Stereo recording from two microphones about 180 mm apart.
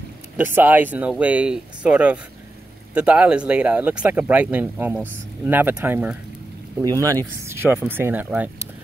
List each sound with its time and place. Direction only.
0.6 s speech: 10° right (ahead or behind)
6.8 s speech: 20° right (ahead or behind)